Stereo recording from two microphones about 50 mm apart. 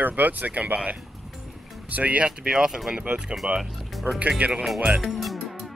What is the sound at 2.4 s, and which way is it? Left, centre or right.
Speech, centre.